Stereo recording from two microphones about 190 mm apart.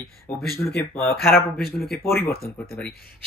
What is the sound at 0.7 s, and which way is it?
Speech, 10° left (ahead or behind).